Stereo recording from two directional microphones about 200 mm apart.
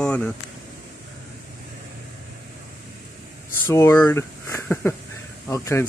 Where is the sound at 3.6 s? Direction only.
10° left (ahead or behind).